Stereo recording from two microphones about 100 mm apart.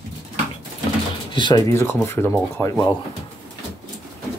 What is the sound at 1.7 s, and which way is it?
Speech, 25° left (ahead or behind).